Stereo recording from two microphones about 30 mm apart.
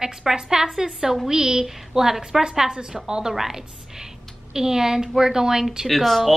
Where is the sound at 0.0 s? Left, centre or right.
Centre.